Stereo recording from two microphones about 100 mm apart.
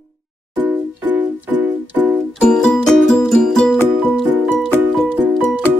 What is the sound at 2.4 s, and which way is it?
Music, 5° left (ahead or behind).